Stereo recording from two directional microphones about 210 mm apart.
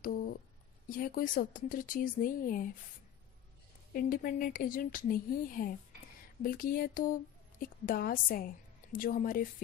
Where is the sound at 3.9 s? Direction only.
40° left (ahead or behind).